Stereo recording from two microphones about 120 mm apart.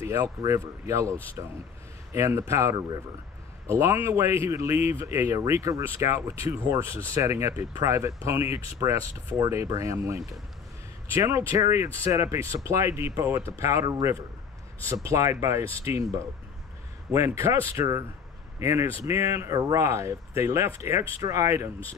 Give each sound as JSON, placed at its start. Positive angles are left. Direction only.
{"t": 0.0, "sound": "speech", "side_deg": -20}
{"t": 2.1, "sound": "speech", "side_deg": -20}